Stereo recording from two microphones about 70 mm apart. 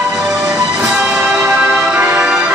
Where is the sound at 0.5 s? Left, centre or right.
Centre.